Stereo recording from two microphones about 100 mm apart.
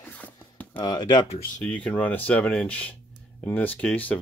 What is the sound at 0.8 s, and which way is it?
Speech, 50° left (ahead or behind).